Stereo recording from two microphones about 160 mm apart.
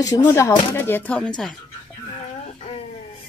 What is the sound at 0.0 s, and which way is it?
Speech, 20° left (ahead or behind).